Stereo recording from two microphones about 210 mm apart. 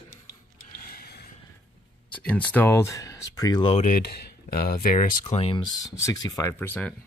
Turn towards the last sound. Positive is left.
turn(degrees=10)  # may be behind; listen again after turning